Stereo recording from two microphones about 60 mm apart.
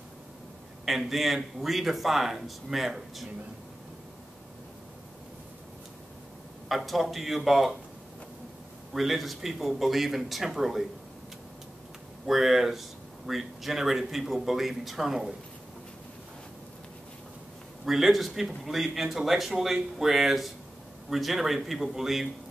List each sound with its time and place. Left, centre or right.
0.8 s speech: centre
6.7 s speech: centre
8.9 s speech: centre
12.3 s speech: centre
17.8 s speech: centre